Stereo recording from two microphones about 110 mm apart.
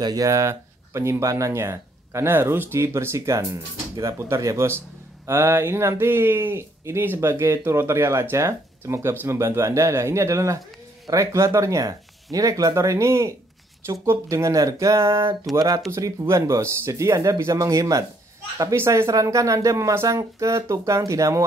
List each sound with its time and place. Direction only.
0.0 s speech: 35° right (ahead or behind)